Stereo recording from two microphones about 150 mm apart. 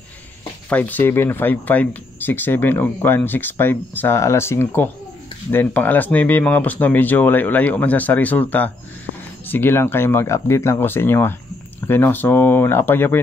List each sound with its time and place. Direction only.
0.7 s speech: 10° left (ahead or behind)